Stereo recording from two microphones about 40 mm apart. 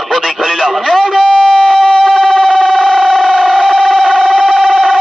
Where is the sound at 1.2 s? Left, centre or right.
Right.